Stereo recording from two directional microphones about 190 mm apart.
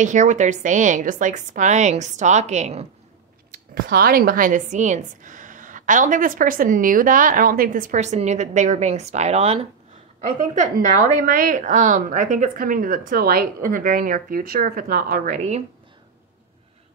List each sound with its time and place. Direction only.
0.0 s a woman's voice: 40° right (ahead or behind)
3.7 s a woman's voice: 50° right (ahead or behind)